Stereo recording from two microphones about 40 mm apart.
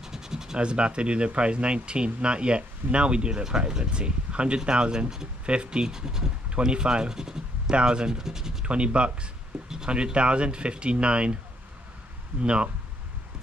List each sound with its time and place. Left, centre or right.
0.0 s scratch: centre
0.6 s speech: right
8.6 s speech: right